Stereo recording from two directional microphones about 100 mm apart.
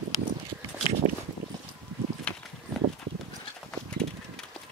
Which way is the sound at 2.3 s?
10° left (ahead or behind).